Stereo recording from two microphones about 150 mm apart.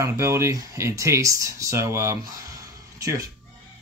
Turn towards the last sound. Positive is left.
turn(degrees=-20)  # may be behind; listen again after turning